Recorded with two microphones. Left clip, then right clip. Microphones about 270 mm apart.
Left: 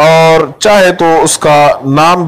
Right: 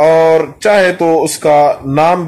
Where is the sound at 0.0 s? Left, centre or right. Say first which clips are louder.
Left 3 dB; left.